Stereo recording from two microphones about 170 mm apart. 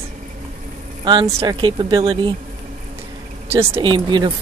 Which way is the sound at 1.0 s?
25° right (ahead or behind).